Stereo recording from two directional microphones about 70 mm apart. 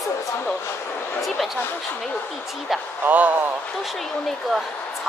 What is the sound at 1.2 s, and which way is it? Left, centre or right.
Speech, centre.